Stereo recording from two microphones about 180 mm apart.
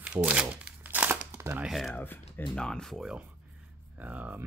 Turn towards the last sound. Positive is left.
turn(degrees=-10)  # may be behind; listen again after turning